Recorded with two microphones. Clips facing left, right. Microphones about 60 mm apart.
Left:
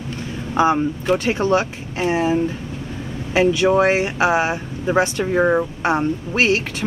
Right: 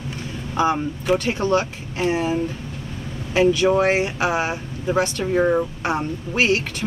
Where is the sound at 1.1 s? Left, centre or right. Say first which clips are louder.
Left 1 dB; left.